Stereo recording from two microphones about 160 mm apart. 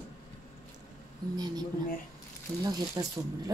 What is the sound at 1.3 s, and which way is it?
Speech, 25° right (ahead or behind).